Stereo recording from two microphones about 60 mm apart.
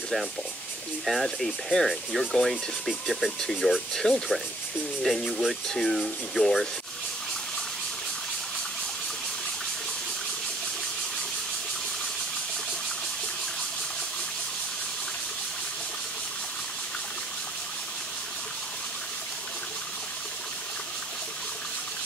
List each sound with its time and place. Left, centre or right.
1.0 s speech: centre